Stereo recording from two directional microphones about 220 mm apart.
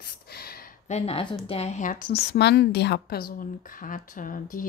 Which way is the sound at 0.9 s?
25° left (ahead or behind).